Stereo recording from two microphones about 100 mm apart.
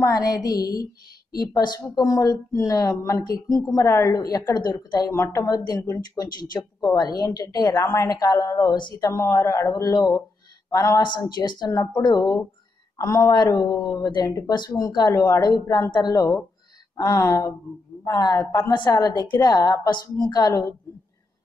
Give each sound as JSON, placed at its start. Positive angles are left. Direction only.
{"t": 0.0, "sound": "a woman's voice", "side_deg": 35}
{"t": 5.1, "sound": "a woman's voice", "side_deg": 25}
{"t": 5.6, "sound": "a woman's voice", "side_deg": 45}
{"t": 9.1, "sound": "a woman's voice", "side_deg": 30}
{"t": 11.1, "sound": "a woman's voice", "side_deg": 45}
{"t": 11.7, "sound": "a woman's voice", "side_deg": 30}
{"t": 12.0, "sound": "a woman's voice", "side_deg": 45}
{"t": 18.7, "sound": "a woman's voice", "side_deg": 50}